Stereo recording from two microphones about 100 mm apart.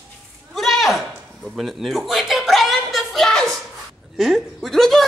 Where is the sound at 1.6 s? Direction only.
Centre (ahead or behind).